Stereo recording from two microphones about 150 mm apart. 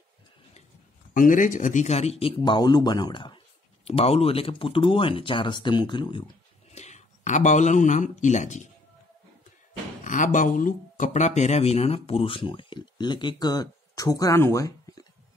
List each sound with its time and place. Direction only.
1.1 s speech: 60° left (ahead or behind); by 3.3 s 30° left (ahead or behind)
3.8 s speech: 40° left (ahead or behind)
6.7 s speech: 50° left (ahead or behind)
10.0 s speech: 60° left (ahead or behind); by 15.0 s 20° left (ahead or behind)